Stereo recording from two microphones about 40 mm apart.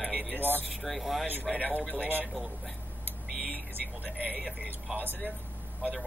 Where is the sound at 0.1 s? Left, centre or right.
Right.